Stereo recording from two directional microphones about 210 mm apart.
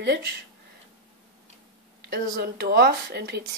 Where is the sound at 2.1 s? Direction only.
50° right (ahead or behind).